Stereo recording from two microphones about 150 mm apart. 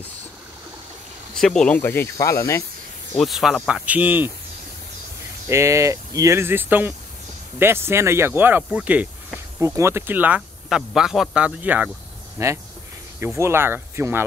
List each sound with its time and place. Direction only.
1.4 s speech: 5° left (ahead or behind)
3.2 s speech: centre (ahead or behind)
5.5 s speech: 20° right (ahead or behind)